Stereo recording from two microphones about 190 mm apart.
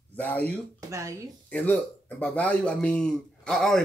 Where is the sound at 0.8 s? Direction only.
15° right (ahead or behind).